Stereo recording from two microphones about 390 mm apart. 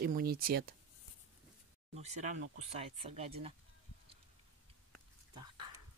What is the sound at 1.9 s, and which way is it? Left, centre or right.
Speech, centre.